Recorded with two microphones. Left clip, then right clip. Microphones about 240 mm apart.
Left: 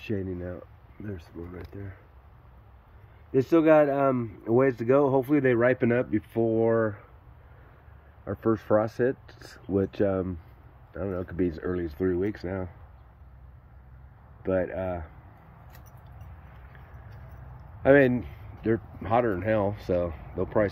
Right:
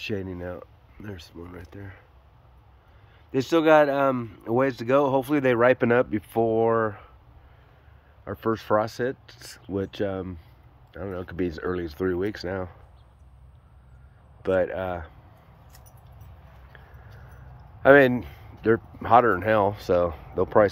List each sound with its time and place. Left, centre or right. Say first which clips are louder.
0.0 s speech: right 2 dB; centre
3.3 s speech: right 1 dB; centre
8.3 s speech: even; centre
14.4 s speech: right 4 dB; centre
17.8 s speech: right 4 dB; centre